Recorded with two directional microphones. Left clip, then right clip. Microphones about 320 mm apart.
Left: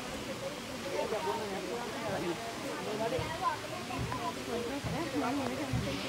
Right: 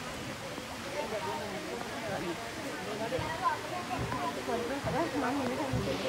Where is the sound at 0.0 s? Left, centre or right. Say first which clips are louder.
Left 1 dB; centre.